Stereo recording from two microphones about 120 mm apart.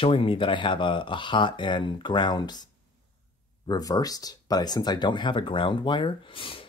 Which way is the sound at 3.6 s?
30° left (ahead or behind).